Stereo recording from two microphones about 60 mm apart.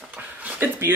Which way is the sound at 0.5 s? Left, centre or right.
Right.